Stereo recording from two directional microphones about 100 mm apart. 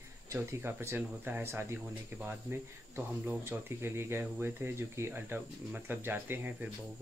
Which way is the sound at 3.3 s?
25° right (ahead or behind).